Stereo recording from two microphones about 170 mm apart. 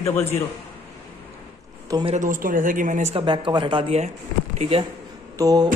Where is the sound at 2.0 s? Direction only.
50° right (ahead or behind).